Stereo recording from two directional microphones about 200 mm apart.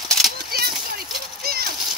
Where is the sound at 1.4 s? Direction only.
50° right (ahead or behind).